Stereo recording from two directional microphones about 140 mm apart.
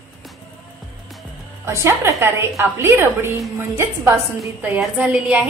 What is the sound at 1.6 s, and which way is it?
A woman's voice, 15° right (ahead or behind).